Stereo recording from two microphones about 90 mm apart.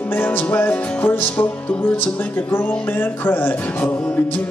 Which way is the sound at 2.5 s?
25° left (ahead or behind).